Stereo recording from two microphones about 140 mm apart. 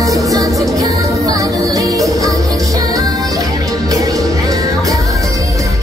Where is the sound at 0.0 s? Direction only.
25° right (ahead or behind).